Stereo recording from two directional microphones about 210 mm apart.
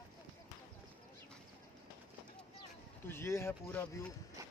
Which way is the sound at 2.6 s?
10° left (ahead or behind).